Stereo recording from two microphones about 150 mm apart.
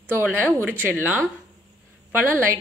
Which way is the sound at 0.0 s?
15° right (ahead or behind).